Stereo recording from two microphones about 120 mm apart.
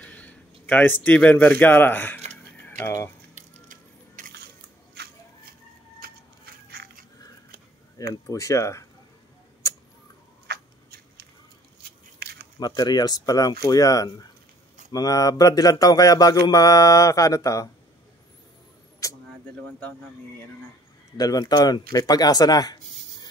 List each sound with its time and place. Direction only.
0.0 s speech: 10° left (ahead or behind)
2.3 s cutlery: 15° left (ahead or behind)
3.3 s a sound: 90° right
4.2 s biting: 90° right
8.1 s speech: 25° left (ahead or behind)
12.5 s speech: 35° left (ahead or behind)
19.0 s a sound: 30° left (ahead or behind)
21.2 s speech: 30° left (ahead or behind)